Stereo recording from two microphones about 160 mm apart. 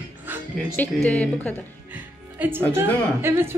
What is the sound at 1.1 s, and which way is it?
Speech, 10° left (ahead or behind).